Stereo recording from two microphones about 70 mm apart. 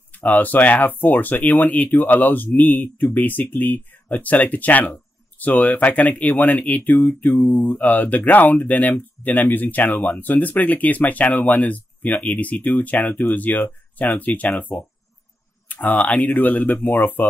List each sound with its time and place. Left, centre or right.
0.1 s speech: left